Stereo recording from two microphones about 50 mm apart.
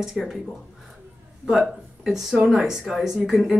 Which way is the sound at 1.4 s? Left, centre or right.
Centre.